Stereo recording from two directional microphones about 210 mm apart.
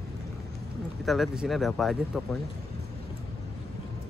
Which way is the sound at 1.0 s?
Centre (ahead or behind).